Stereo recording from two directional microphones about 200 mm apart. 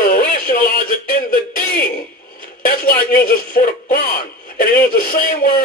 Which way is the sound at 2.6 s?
45° left (ahead or behind).